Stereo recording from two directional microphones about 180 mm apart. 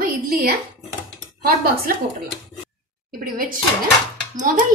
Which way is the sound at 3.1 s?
55° right (ahead or behind).